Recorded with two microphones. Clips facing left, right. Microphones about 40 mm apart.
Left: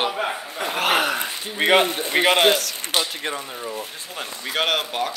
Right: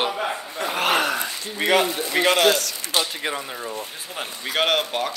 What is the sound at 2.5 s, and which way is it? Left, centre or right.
Speech, centre.